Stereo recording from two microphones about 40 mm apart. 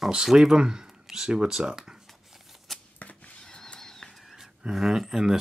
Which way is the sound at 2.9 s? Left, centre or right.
Left.